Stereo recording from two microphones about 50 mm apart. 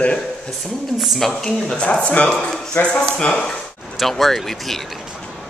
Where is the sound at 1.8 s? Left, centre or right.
Left; by 4.8 s centre.